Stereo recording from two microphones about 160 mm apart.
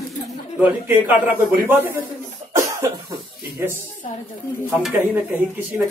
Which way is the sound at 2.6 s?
20° right (ahead or behind).